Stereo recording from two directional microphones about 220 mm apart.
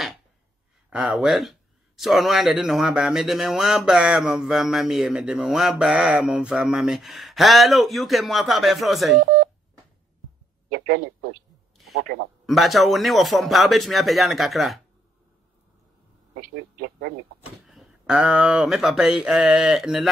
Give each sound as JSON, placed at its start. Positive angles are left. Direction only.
{"t": 0.8, "sound": "speech", "side_deg": -5}
{"t": 12.4, "sound": "speech", "side_deg": 0}
{"t": 16.3, "sound": "speech", "side_deg": -40}
{"t": 17.6, "sound": "speech", "side_deg": -5}